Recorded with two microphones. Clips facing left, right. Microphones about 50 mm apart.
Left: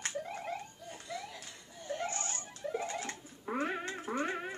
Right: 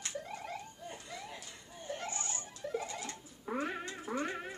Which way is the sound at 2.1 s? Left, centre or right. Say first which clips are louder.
Left 2 dB; left.